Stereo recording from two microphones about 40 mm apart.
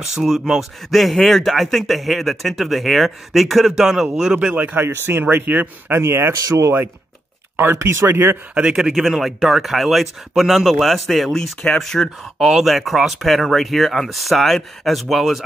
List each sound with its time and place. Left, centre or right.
0.1 s speech: centre
0.9 s speech: centre
4.7 s speech: right
5.2 s speech: right
5.9 s speech: right
8.5 s speech: right
8.9 s speech: centre